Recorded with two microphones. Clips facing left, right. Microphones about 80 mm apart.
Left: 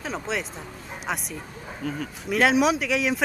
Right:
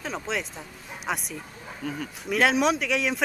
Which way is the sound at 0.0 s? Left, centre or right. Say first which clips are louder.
Left 1 dB; centre.